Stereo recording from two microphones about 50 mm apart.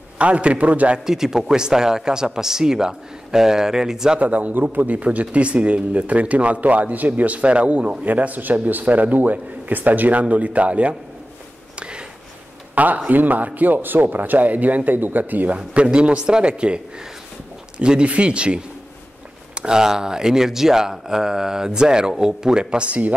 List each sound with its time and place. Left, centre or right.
0.2 s a man's voice: right
1.0 s speech: centre
4.2 s a man's voice: right
11.8 s a sound: centre
12.7 s a man's voice: right